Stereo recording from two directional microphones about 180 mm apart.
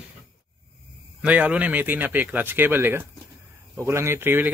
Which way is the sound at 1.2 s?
10° right (ahead or behind).